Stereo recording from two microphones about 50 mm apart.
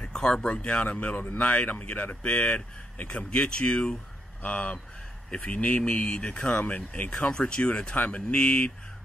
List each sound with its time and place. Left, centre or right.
0.0 s speech: centre
2.2 s speech: centre
4.4 s speech: left
6.6 s speech: left
7.1 s speech: centre